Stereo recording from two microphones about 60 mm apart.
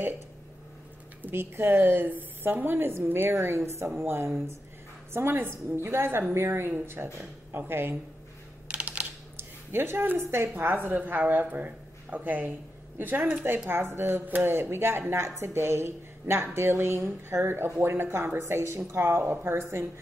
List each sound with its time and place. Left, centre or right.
1.2 s a woman's voice: right
8.6 s computer keyboard: centre
9.4 s a sound: right
10.1 s speech: right
10.5 s a woman's voice: right